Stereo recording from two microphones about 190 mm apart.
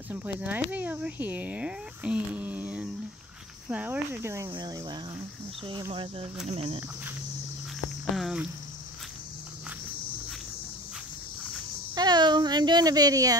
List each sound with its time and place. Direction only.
0.1 s speech: 10° right (ahead or behind); by 6.8 s 30° right (ahead or behind)
8.2 s speech: 5° right (ahead or behind)
11.9 s a sound: 20° right (ahead or behind)